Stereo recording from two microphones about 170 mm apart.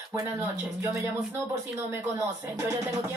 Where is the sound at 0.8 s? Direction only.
20° right (ahead or behind).